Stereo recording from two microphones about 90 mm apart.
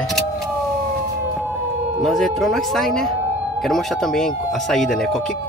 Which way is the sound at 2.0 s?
Centre (ahead or behind).